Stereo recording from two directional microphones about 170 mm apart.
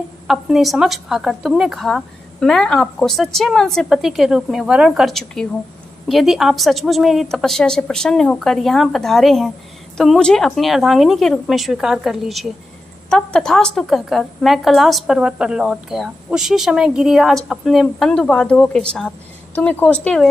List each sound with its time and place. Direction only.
0.3 s a woman's voice: centre (ahead or behind)